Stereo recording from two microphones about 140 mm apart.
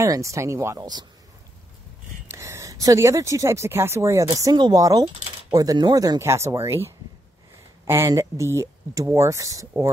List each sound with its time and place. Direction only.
0.0 s speech: 20° right (ahead or behind)
2.2 s speech: 20° right (ahead or behind)